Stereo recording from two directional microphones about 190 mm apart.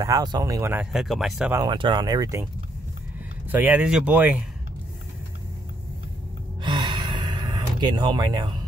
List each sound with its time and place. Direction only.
0.0 s speech: 20° right (ahead or behind); by 1.5 s centre (ahead or behind)
1.5 s speech: 20° right (ahead or behind)
3.4 s speech: 10° right (ahead or behind)
6.6 s gasp: 25° right (ahead or behind)